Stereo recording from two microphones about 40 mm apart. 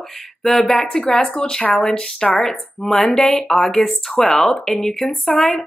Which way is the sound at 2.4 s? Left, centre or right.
Centre.